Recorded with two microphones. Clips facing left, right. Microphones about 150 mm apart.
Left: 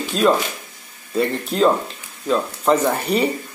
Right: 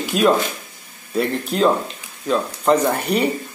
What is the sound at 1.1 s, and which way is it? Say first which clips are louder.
Speech: left 1 dB; centre (ahead or behind).